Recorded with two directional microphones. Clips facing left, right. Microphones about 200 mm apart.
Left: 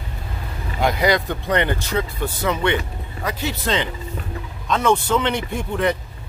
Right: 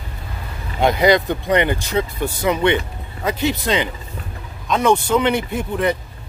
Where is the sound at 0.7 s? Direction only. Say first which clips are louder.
Right 4 dB; 25° right (ahead or behind).